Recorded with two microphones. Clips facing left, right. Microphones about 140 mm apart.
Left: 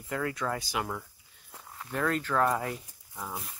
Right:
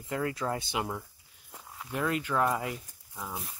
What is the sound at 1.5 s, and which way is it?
Speech, 5° right (ahead or behind).